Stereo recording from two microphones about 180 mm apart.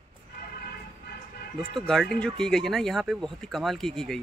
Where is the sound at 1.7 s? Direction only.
Centre (ahead or behind).